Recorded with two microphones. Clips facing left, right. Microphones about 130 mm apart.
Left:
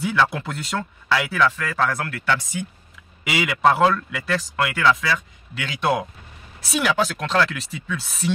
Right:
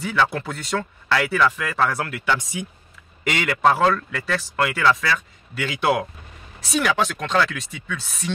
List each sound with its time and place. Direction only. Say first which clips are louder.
0.0 s speech: left 1 dB; centre (ahead or behind)
3.3 s speech: even; 5° left (ahead or behind)